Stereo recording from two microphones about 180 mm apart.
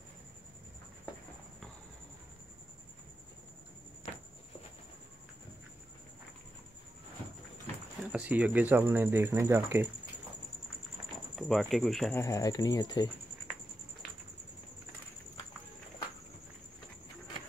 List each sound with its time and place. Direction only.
8.0 s speech: 5° right (ahead or behind)
11.3 s speech: centre (ahead or behind)
12.1 s speech: 15° left (ahead or behind)